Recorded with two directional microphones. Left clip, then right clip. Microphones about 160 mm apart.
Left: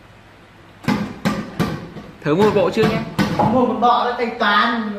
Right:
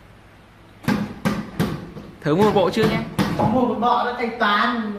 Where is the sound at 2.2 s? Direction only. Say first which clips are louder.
Left 2 dB; 20° right (ahead or behind).